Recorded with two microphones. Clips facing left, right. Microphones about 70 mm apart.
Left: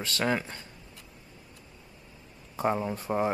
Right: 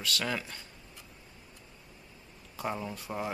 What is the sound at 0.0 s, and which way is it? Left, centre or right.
Speech, left.